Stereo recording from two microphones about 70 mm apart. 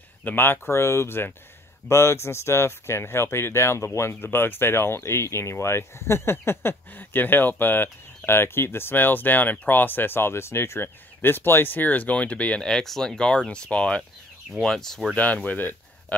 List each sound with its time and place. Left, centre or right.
0.2 s speech: left
12.6 s speech: centre
15.1 s speech: left